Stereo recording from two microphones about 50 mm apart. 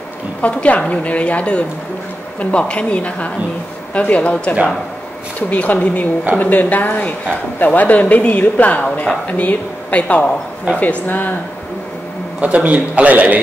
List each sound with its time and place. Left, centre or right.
0.4 s a woman's voice: left
12.4 s a man's voice: right